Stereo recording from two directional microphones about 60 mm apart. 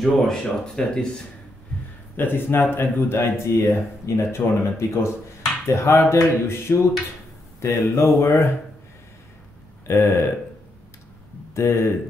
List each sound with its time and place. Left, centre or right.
0.0 s speech: centre
2.1 s speech: left
9.8 s speech: left
11.5 s speech: left